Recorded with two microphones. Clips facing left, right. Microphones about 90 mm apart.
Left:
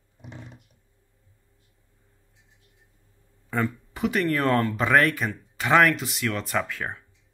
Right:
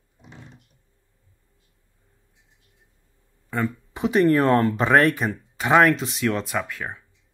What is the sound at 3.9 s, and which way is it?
Speech, 25° right (ahead or behind).